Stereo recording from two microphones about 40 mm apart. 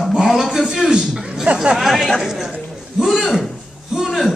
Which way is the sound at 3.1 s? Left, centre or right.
Centre.